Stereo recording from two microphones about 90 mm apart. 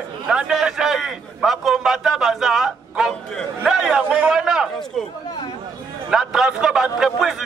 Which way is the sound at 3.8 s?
15° right (ahead or behind).